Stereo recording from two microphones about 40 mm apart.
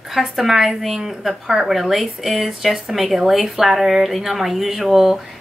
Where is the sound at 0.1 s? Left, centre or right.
Centre.